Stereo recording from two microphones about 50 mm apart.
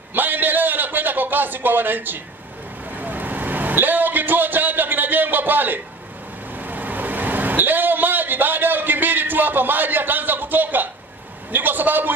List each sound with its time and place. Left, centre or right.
0.1 s a sound: right
2.9 s vehicle: right
11.5 s a man's voice: right